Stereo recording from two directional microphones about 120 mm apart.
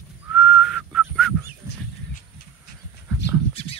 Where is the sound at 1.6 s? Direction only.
25° right (ahead or behind).